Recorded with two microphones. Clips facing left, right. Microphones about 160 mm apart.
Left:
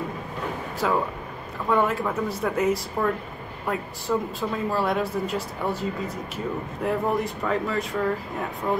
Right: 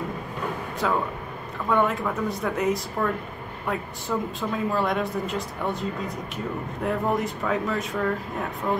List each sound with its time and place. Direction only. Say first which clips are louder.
0.8 s speech: left 1 dB; centre (ahead or behind)
4.4 s speech: even; centre (ahead or behind)